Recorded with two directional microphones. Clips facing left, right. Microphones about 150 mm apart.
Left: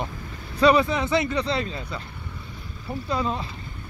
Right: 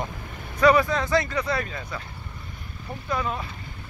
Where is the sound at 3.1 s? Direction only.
25° left (ahead or behind).